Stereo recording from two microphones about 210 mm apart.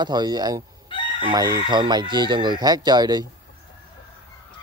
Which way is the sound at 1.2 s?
20° right (ahead or behind).